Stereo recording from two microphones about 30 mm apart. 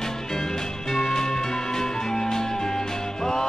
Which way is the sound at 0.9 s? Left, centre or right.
Centre.